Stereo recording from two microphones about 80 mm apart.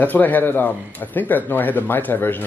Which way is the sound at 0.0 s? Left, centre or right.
Left.